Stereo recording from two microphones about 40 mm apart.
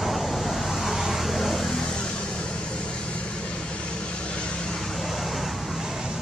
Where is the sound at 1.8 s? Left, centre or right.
Left.